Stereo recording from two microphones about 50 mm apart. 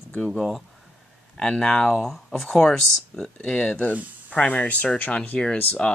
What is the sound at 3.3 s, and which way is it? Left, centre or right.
Speech, left.